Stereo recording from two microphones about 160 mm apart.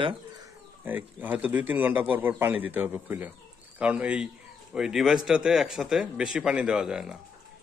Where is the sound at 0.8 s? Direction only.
10° right (ahead or behind).